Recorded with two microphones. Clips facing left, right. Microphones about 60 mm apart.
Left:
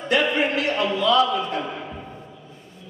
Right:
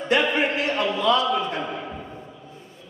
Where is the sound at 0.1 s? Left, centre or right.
Right.